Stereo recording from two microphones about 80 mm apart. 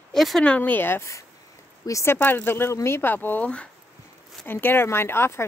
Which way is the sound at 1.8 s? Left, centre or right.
Left.